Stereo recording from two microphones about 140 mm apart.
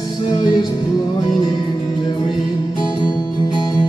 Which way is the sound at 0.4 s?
30° left (ahead or behind).